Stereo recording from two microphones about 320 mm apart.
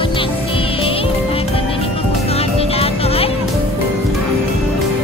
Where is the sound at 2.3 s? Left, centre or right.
Centre.